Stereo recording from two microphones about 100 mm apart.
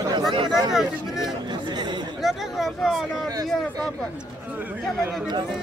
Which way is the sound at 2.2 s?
Centre (ahead or behind).